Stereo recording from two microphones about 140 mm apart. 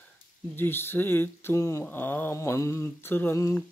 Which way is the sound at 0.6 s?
15° left (ahead or behind).